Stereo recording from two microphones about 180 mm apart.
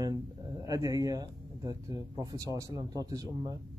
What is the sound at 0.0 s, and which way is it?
Speech, 20° right (ahead or behind).